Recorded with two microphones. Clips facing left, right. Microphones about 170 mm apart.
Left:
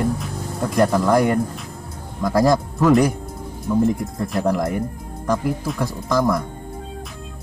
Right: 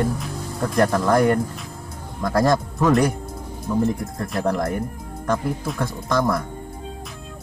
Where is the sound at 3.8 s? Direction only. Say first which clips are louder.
Left 3 dB; 20° left (ahead or behind).